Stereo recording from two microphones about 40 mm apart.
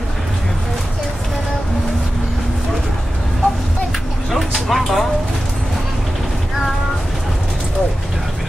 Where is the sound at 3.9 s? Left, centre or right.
Centre.